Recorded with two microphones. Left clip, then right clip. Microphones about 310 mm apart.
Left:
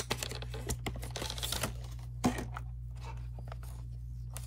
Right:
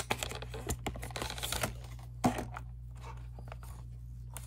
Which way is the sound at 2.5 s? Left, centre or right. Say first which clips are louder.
Even; centre.